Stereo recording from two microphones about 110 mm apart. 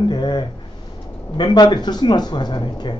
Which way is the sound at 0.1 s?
40° left (ahead or behind).